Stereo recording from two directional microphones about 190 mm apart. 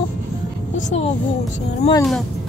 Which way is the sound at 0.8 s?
40° left (ahead or behind).